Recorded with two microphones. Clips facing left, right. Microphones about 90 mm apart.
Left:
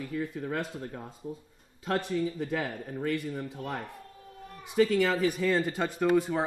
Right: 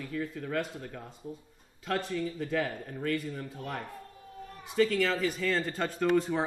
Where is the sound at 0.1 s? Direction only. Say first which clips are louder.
Even; 20° left (ahead or behind).